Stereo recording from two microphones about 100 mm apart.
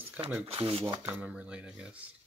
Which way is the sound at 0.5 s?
65° right (ahead or behind).